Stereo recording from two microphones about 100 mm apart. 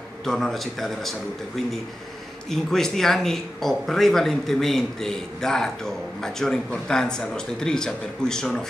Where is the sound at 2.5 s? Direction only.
5° left (ahead or behind).